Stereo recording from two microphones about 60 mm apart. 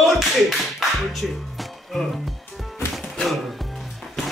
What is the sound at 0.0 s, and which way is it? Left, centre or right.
Music, centre.